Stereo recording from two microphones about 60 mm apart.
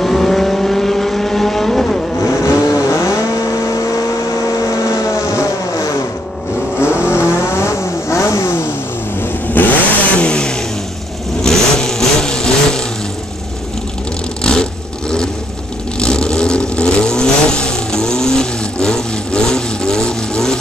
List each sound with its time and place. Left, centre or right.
0.0 s vehicle: centre
2.2 s vehicle: left
7.0 s vehicle: left
9.2 s vehicle: left; by 12.8 s centre
14.4 s vehicle: centre